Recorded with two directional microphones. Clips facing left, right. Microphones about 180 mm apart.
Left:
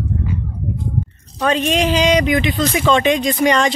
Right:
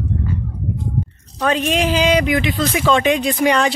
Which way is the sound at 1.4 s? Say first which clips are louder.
Left 1 dB; 5° right (ahead or behind).